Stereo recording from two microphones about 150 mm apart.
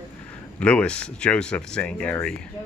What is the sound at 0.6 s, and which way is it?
Speech, 10° left (ahead or behind).